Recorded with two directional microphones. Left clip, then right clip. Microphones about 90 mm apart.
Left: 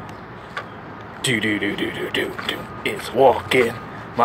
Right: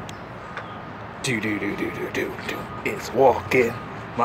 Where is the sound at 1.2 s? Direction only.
20° left (ahead or behind).